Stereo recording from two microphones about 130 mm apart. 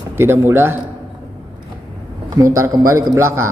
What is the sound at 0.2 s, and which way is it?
Speech, 20° right (ahead or behind).